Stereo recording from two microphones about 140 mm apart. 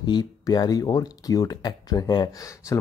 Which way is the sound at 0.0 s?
30° left (ahead or behind).